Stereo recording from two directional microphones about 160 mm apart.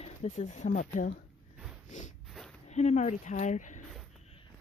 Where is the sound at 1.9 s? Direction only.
50° left (ahead or behind).